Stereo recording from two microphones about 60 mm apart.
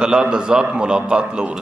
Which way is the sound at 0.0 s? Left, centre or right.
Centre.